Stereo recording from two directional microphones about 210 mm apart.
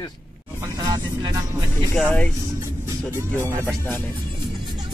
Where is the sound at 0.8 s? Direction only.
20° right (ahead or behind).